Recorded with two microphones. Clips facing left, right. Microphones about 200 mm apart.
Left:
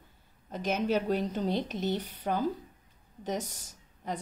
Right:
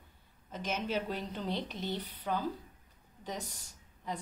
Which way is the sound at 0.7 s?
40° left (ahead or behind).